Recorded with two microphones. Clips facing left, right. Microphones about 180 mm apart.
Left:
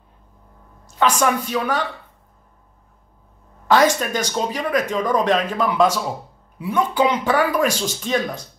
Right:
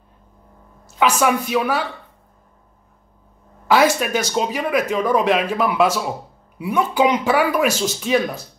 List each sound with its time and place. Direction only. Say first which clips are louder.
0.8 s speech: right 1 dB; 10° right (ahead or behind)
3.6 s speech: even; 10° right (ahead or behind)